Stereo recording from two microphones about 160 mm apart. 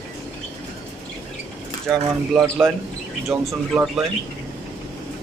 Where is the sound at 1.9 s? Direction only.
Centre (ahead or behind).